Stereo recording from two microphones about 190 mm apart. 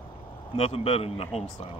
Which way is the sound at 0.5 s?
30° left (ahead or behind).